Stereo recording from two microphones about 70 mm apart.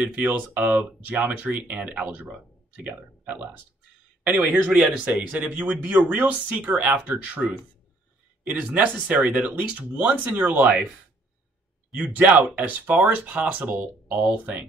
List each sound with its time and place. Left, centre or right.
0.0 s speech: right
4.7 s speech: centre
12.0 s speech: right